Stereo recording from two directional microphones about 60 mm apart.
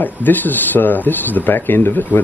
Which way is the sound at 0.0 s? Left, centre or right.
Left.